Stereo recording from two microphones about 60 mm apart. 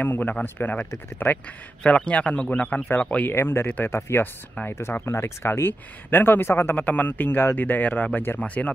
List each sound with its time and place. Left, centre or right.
0.0 s speech: left
3.3 s speech: left
3.6 s speech: left
3.9 s speech: left